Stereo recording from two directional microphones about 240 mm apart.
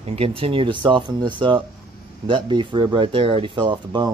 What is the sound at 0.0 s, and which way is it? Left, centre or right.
A man's voice, right.